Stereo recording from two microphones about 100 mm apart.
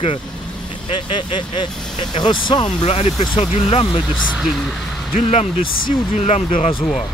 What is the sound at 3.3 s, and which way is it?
Speech, 80° left.